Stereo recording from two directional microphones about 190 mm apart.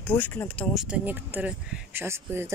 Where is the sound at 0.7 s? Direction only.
5° right (ahead or behind).